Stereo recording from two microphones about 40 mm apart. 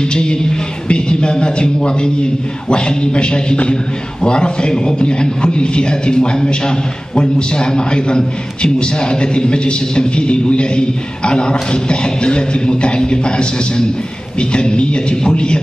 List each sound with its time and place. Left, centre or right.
0.0 s a man's voice: left